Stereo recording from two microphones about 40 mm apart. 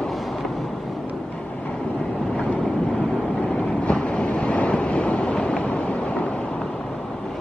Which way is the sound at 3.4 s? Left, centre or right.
Left.